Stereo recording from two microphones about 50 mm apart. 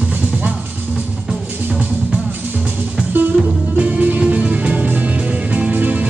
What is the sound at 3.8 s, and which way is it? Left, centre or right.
Music, right.